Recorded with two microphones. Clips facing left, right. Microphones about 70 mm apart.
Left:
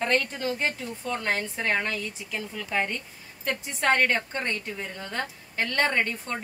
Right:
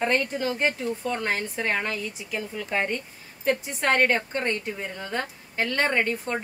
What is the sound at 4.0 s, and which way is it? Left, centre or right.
A woman's voice, right.